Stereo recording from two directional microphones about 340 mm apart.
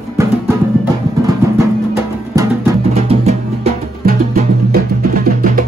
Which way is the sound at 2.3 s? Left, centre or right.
Centre.